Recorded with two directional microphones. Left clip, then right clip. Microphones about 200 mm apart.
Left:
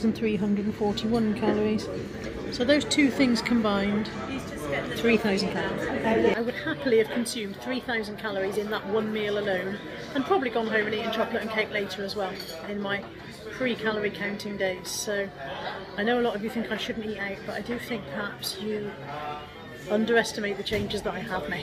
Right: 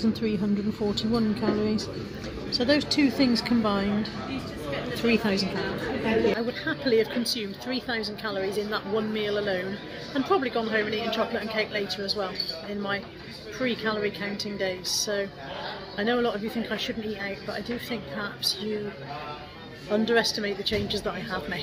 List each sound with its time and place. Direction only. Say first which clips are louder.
0.0 s speech: left 1 dB; centre (ahead or behind)
13.6 s speech: even; 5° right (ahead or behind)
19.9 s speech: even; centre (ahead or behind)